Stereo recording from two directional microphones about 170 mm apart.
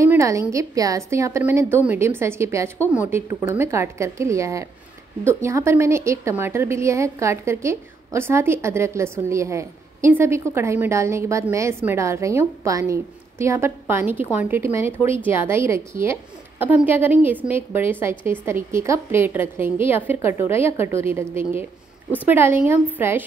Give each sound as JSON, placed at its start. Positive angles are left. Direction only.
{"t": 0.0, "sound": "a woman's voice", "side_deg": -20}